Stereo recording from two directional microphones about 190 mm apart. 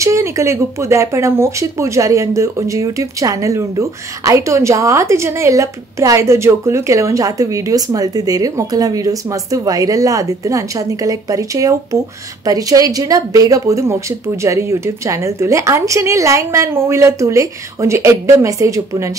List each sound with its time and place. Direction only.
0.0 s speech: 15° right (ahead or behind)